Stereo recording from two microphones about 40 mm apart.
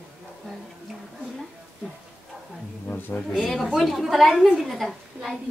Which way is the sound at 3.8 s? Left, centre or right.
Centre.